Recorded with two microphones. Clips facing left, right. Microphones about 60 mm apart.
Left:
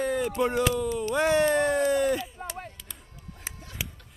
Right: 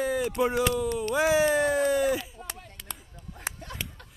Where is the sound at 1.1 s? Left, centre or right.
Centre.